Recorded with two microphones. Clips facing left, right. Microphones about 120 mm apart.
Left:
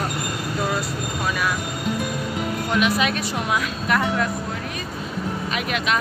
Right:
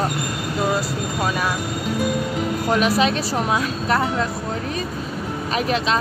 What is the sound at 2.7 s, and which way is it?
A woman's voice, 35° right (ahead or behind).